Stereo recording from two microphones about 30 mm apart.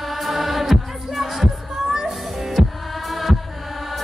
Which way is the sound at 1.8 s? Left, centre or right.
Centre.